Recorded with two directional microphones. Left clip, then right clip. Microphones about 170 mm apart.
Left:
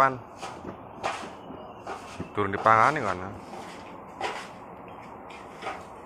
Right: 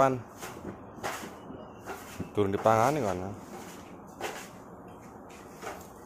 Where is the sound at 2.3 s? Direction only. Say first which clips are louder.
Left 4 dB; 45° right (ahead or behind).